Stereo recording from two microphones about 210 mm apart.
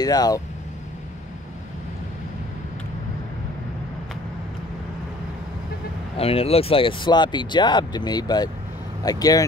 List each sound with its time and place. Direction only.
0.0 s speech: 20° left (ahead or behind)
6.1 s speech: 25° left (ahead or behind)